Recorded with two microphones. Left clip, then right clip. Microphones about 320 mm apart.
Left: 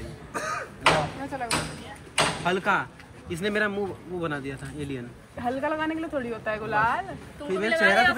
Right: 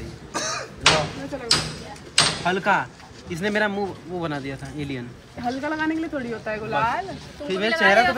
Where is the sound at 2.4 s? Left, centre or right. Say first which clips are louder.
Right 3 dB; centre.